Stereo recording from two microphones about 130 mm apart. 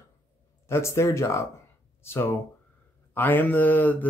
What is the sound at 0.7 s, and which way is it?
Speech, 20° left (ahead or behind).